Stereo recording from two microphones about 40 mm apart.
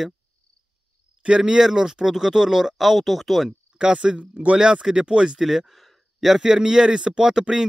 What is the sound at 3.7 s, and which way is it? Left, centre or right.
Speech, right.